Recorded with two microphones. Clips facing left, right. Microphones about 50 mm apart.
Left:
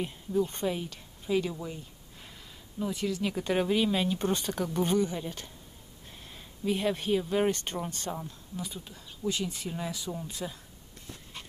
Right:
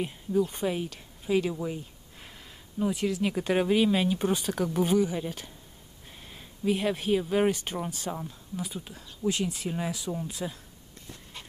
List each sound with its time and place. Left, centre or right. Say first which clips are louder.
0.5 s speech: right 2 dB; centre
2.9 s speech: right 2 dB; centre
9.7 s speech: right 4 dB; centre
9.9 s speech: right 3 dB; centre